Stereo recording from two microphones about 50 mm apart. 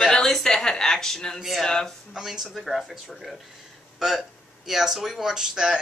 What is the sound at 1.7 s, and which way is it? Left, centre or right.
Speech, centre.